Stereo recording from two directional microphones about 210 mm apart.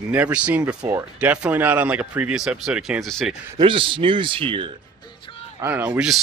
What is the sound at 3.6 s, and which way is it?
Speech, 25° right (ahead or behind).